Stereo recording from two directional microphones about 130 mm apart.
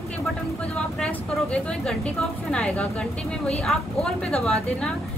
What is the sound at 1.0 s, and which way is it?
Speech, 5° left (ahead or behind).